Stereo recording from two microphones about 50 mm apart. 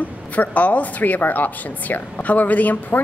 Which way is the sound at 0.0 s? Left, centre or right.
Left.